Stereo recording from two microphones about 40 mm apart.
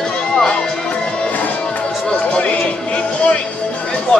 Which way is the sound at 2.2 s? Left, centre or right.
Left.